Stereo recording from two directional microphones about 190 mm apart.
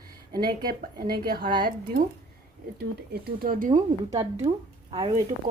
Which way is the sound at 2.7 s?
55° right (ahead or behind).